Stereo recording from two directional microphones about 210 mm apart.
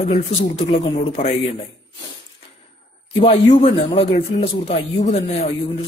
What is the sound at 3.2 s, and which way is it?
A man's voice, 30° left (ahead or behind).